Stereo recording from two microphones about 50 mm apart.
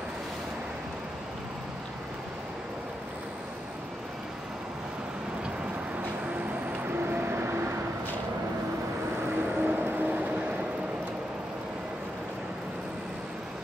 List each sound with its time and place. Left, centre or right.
6.9 s vehicle: right
9.4 s vehicle: right